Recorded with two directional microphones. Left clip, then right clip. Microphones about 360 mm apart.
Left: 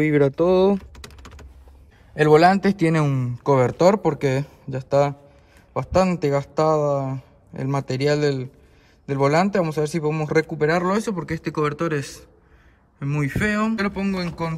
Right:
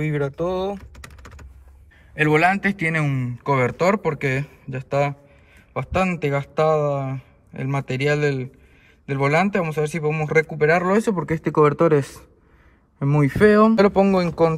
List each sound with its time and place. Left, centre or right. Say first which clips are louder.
0.0 s speech: left 6 dB; left
0.9 s typing: even; centre
2.3 s speech: left 4 dB; centre
13.3 s speech: right 9 dB; centre